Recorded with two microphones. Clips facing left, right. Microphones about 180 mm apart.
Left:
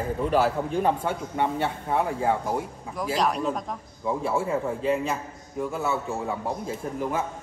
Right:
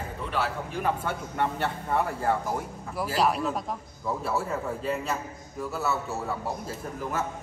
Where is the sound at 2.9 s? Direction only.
5° right (ahead or behind).